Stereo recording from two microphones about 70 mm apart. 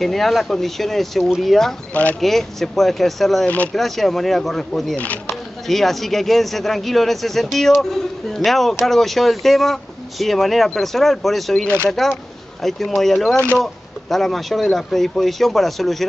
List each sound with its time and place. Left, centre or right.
0.0 s speech: centre
3.4 s speech: centre
3.7 s speech: centre
4.9 s speech: left
5.7 s speech: centre
11.6 s speech: right
12.6 s speech: centre